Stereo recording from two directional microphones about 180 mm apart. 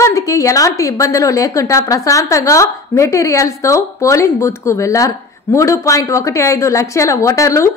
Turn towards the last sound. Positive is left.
turn(degrees=15)  # may be behind; listen again after turning